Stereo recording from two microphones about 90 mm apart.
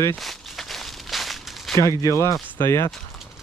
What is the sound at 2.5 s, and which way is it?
Speech, 25° left (ahead or behind).